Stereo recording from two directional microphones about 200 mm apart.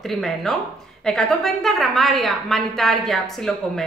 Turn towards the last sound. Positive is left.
turn(degrees=0)  # may be behind; listen again after turning